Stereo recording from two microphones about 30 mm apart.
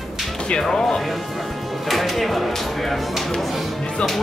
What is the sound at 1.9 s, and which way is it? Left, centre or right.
Speech, centre.